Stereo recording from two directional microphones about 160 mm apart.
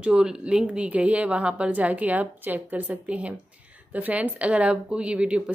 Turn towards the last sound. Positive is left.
turn(degrees=-5)  # may be behind; listen again after turning